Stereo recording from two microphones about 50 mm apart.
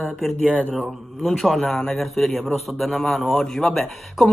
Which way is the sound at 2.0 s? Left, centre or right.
Centre.